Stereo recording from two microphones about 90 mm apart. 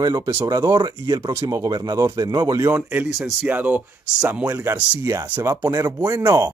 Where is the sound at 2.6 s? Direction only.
20° right (ahead or behind).